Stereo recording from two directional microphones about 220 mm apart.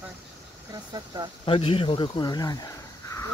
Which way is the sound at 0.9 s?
20° right (ahead or behind).